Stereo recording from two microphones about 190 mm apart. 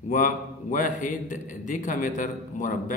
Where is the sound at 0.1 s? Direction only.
45° left (ahead or behind).